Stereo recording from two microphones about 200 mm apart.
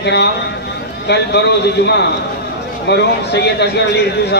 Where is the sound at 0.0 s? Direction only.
60° left (ahead or behind).